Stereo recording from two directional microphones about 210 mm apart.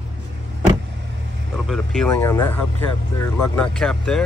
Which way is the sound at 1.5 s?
Centre (ahead or behind).